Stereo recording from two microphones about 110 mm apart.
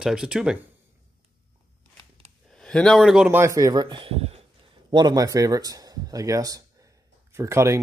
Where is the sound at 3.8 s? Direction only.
50° right (ahead or behind).